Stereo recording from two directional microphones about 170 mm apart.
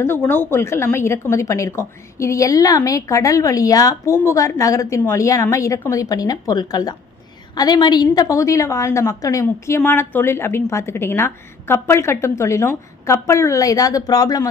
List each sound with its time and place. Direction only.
0.0 s a woman's voice: 10° left (ahead or behind)